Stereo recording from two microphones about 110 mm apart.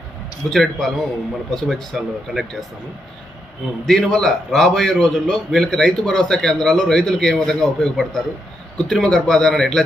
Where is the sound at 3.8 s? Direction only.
5° left (ahead or behind).